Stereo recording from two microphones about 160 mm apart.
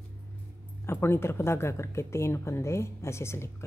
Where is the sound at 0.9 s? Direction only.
15° left (ahead or behind).